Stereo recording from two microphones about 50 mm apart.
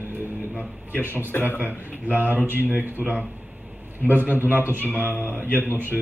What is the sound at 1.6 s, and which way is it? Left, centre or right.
Speech, right.